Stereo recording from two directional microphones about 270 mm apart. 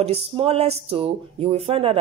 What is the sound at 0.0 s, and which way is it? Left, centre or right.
Speech, right.